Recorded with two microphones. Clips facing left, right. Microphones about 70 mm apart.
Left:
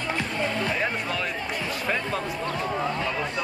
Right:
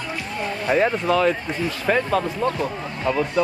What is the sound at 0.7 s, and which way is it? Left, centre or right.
Speech, right.